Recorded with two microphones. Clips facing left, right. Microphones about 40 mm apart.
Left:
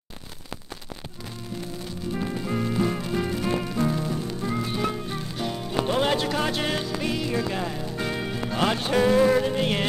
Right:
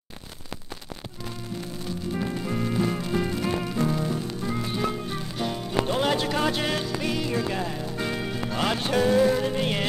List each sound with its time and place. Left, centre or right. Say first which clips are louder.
2.1 s music: left 2 dB; centre
5.9 s music: left 2 dB; centre
6.1 s music: even; centre
8.9 s music: left 1 dB; centre
9.4 s music: left 1 dB; centre